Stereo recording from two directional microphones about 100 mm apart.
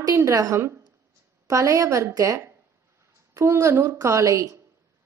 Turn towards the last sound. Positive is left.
turn(degrees=-30)  # may be behind; listen again after turning